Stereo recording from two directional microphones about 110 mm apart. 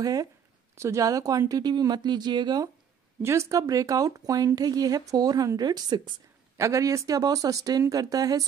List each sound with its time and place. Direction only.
0.0 s speech: 35° right (ahead or behind)
3.2 s speech: 25° right (ahead or behind); by 6.2 s 45° right (ahead or behind)
6.5 s speech: 25° right (ahead or behind)